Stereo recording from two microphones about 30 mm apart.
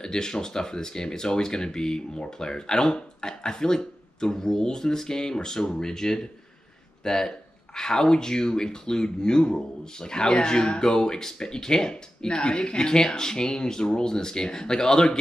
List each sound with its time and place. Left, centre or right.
0.0 s speech: left